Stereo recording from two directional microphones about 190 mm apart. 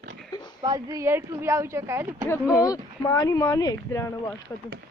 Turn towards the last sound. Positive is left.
turn(degrees=15)  # may be behind; listen again after turning